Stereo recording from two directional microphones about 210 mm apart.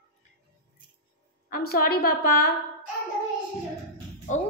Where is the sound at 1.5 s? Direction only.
45° left (ahead or behind).